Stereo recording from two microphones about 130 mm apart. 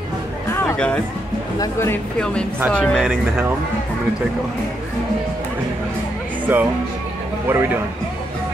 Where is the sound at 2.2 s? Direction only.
5° left (ahead or behind).